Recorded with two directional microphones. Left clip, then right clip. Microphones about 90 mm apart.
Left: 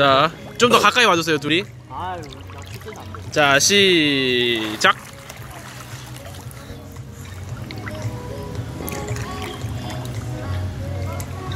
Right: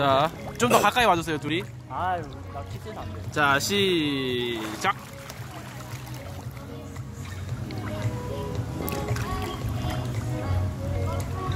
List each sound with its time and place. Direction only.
0.0 s speech: 20° left (ahead or behind)
0.6 s speech: 10° left (ahead or behind)
1.3 s speech: 35° left (ahead or behind)
3.3 s speech: 30° left (ahead or behind)
9.8 s music: centre (ahead or behind)